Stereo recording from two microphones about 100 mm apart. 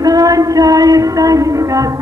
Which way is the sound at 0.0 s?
35° right (ahead or behind).